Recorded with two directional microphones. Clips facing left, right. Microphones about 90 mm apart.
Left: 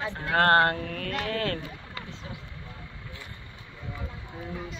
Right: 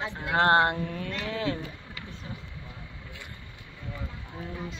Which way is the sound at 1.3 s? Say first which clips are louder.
Even; 15° right (ahead or behind).